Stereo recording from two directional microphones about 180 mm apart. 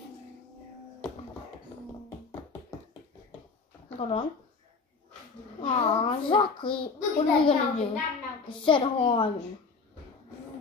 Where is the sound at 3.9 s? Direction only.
30° left (ahead or behind).